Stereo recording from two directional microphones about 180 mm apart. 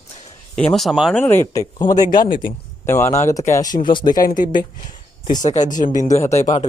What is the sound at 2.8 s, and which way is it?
Speech, 15° left (ahead or behind).